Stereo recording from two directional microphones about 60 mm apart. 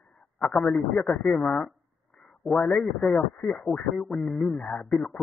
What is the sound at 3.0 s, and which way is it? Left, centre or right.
Speech, centre.